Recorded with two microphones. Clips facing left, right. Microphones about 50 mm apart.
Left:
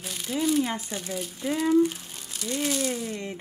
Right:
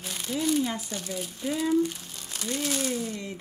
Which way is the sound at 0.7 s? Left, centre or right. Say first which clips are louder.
Left 2 dB; left.